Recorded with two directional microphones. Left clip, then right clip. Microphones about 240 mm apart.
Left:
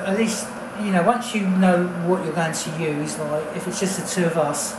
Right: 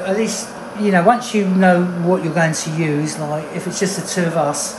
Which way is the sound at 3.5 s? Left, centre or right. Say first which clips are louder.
Right 4 dB; right.